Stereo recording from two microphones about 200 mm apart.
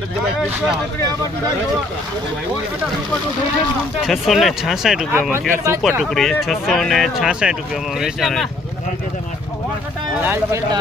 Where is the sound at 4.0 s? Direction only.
Centre (ahead or behind).